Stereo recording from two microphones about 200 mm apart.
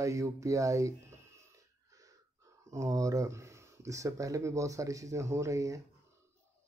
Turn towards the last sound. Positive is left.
turn(degrees=-15)  # may be behind; listen again after turning